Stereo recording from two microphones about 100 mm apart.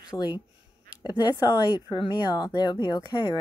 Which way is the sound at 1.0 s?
45° left (ahead or behind).